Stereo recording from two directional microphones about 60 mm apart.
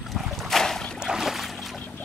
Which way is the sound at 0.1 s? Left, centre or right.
Centre.